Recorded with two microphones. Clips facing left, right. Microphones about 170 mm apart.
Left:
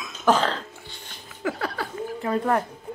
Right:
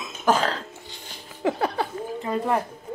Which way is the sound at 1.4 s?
25° right (ahead or behind).